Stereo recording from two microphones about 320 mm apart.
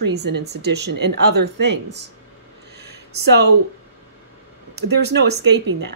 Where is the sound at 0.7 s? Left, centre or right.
Right.